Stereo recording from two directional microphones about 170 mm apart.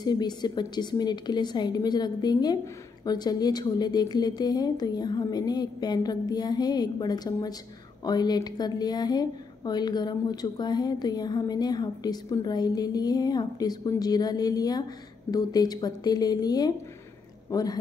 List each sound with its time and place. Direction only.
0.0 s a woman's voice: 25° left (ahead or behind)